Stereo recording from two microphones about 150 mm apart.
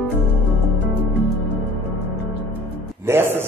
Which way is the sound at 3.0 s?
15° right (ahead or behind).